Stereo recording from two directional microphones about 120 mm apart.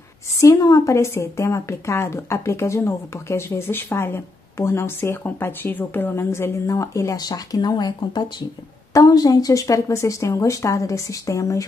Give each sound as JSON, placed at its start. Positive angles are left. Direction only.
{"t": 0.4, "sound": "a woman's voice", "side_deg": 25}